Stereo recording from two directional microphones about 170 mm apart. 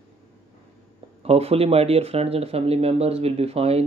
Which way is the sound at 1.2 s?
35° right (ahead or behind).